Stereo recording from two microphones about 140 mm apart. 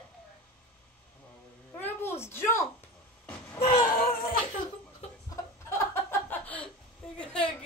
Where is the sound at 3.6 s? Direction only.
85° left.